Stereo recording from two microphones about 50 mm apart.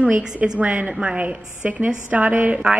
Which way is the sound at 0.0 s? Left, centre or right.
Right.